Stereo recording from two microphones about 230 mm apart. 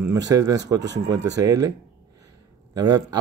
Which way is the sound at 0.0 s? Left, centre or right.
Centre.